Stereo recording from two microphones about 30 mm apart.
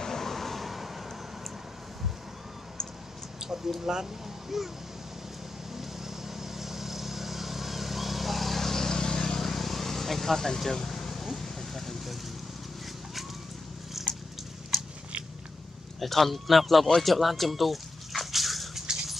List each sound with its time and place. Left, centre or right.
0.0 s vehicle: centre
3.4 s speech: centre
5.8 s vehicle: centre
10.6 s air conditioning: centre
11.3 s a sound: centre
14.0 s biting: centre
16.0 s a man's voice: centre
17.0 s a sound: centre